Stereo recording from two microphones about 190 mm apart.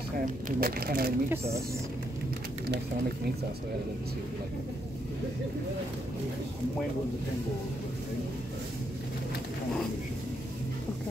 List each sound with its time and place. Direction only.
0.2 s speech: 45° right (ahead or behind)
1.3 s speech: 15° right (ahead or behind)